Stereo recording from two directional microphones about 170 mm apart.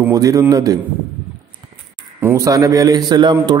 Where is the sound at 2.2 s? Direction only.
20° right (ahead or behind).